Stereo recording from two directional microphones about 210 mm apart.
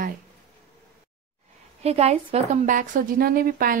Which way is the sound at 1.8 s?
30° right (ahead or behind).